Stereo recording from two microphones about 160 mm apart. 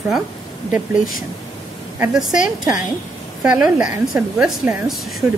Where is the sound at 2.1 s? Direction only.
5° right (ahead or behind).